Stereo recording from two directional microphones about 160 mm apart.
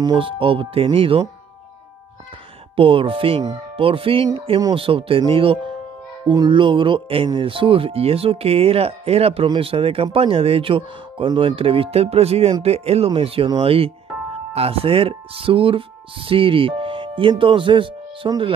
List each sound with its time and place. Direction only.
0.0 s speech: 30° right (ahead or behind)
2.7 s speech: 35° right (ahead or behind)